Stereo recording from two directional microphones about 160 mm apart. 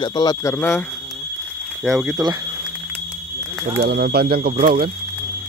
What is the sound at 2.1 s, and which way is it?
Speech, 25° right (ahead or behind).